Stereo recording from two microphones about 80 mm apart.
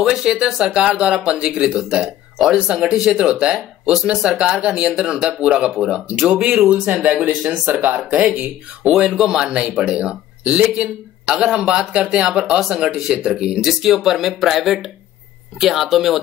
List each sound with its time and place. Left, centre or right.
0.0 s speech: centre
8.8 s speech: centre